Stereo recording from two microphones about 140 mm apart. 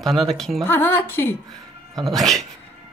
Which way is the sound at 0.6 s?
15° left (ahead or behind).